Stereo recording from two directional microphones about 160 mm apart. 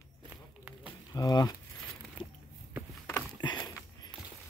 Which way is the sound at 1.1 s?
25° left (ahead or behind).